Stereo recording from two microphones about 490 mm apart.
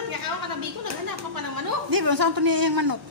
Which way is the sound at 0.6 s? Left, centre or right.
Right.